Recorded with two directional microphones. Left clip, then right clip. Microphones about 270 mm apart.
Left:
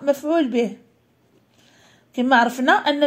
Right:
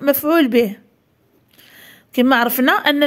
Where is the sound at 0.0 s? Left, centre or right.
Right.